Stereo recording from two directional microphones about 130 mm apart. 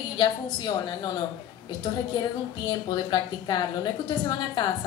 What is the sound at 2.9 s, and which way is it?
A woman's voice, 35° left (ahead or behind).